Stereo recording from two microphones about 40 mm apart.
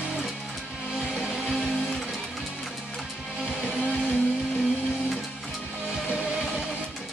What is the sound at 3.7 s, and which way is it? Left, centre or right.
Music, right.